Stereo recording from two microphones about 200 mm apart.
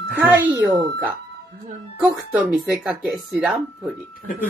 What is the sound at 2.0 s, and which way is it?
Speech, 5° right (ahead or behind).